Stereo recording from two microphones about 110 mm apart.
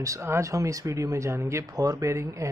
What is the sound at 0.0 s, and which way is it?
Speech, 25° right (ahead or behind).